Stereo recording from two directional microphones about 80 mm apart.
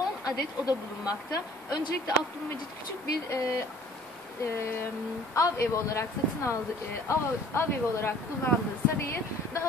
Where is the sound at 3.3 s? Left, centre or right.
Left.